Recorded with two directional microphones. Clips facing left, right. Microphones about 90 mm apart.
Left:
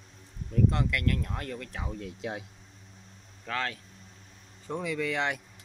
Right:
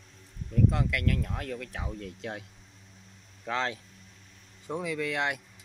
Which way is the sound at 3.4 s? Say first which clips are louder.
Right 2 dB; 20° right (ahead or behind).